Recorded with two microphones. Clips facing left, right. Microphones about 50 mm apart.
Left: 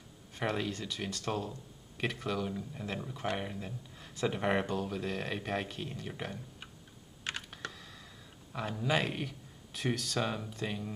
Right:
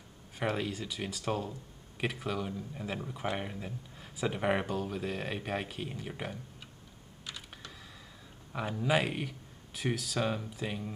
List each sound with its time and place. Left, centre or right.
0.4 s speech: centre
7.3 s computer keyboard: left
8.5 s speech: centre